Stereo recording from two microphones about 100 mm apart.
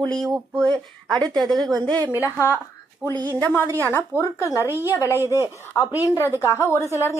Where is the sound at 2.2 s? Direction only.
30° left (ahead or behind).